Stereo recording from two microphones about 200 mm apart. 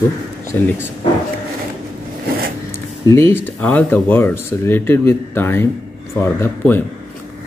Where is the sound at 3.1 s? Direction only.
10° left (ahead or behind).